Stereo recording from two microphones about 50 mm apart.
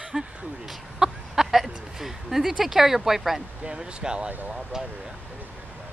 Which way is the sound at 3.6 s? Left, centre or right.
Centre.